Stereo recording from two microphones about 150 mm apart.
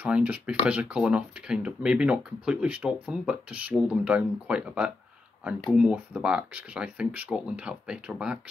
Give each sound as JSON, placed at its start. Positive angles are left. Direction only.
{"t": 0.0, "sound": "speech", "side_deg": -10}